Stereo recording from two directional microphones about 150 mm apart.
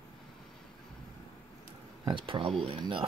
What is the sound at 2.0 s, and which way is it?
Speech, 35° right (ahead or behind).